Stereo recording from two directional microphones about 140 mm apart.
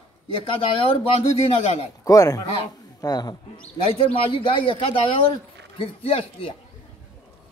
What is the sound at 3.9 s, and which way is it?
A man's voice, 45° left (ahead or behind).